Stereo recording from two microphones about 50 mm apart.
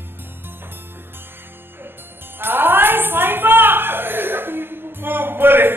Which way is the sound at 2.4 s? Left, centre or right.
Right.